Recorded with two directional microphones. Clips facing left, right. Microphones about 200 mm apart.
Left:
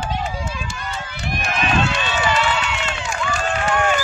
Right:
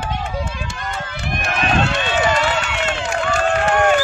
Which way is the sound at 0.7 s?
60° right (ahead or behind).